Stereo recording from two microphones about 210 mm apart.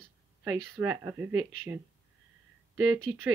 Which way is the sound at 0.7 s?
10° right (ahead or behind).